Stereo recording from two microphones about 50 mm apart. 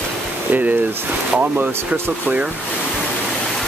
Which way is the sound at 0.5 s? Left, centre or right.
Right.